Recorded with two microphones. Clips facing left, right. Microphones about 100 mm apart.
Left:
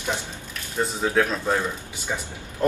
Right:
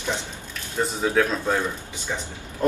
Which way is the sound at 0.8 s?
5° left (ahead or behind).